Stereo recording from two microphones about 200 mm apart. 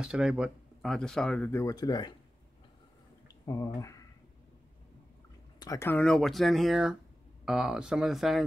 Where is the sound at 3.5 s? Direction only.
15° left (ahead or behind).